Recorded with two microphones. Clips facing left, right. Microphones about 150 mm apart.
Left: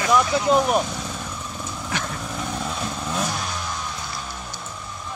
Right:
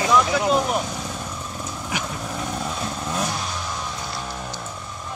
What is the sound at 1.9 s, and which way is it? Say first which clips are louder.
Vehicle: even; 10° right (ahead or behind).